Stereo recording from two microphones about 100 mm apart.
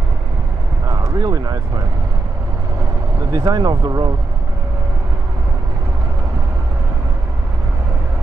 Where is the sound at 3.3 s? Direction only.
40° right (ahead or behind).